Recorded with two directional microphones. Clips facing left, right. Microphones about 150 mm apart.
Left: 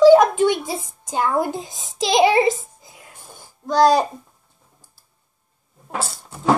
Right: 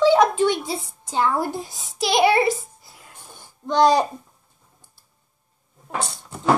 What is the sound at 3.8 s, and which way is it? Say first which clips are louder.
Speech: left 2 dB; 5° left (ahead or behind).